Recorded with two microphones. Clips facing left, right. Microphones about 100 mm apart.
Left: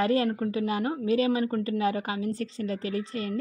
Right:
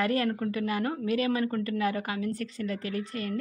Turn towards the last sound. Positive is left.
turn(degrees=30)  # may be behind; listen again after turning